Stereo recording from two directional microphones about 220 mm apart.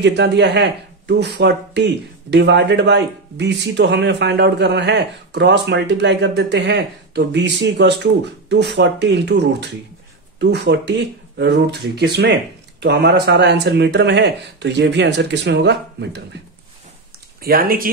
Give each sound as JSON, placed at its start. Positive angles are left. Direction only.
{"t": 0.0, "sound": "speech", "side_deg": -50}
{"t": 17.4, "sound": "speech", "side_deg": -40}